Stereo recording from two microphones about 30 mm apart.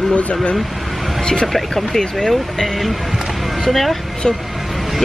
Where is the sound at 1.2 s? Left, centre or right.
Left.